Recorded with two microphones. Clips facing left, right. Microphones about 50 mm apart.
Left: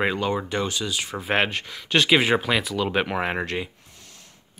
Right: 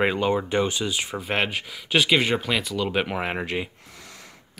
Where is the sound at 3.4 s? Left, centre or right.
Centre.